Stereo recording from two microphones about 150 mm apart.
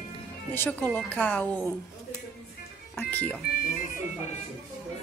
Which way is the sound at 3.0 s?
10° left (ahead or behind).